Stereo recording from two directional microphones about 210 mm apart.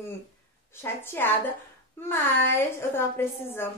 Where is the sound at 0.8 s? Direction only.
10° left (ahead or behind).